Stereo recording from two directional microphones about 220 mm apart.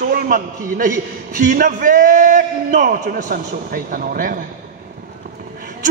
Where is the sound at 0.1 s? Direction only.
35° right (ahead or behind).